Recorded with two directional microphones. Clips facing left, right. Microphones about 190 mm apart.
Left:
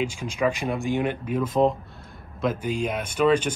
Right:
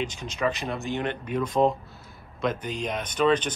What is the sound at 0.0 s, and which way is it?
Speech, 10° left (ahead or behind).